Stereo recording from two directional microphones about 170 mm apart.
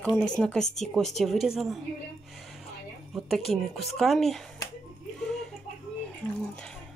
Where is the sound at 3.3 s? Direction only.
Centre (ahead or behind).